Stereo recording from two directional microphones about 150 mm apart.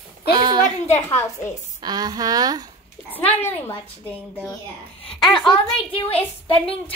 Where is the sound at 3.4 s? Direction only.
15° left (ahead or behind).